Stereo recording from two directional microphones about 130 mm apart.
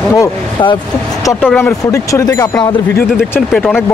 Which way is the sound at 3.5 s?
Centre (ahead or behind).